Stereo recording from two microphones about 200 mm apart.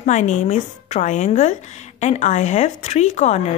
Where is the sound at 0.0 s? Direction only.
35° left (ahead or behind).